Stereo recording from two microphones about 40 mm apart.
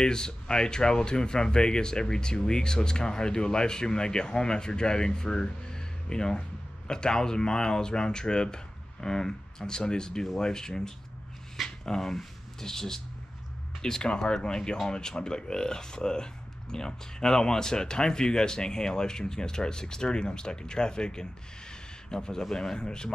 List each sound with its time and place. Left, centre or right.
0.0 s speech: centre
11.8 s speech: centre